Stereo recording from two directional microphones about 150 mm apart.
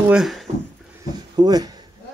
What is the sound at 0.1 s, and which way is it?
Speech, centre (ahead or behind).